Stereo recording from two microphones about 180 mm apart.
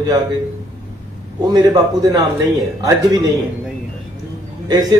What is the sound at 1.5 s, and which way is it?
Speech, 20° right (ahead or behind).